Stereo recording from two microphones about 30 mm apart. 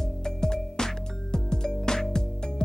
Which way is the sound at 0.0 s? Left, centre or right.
Centre.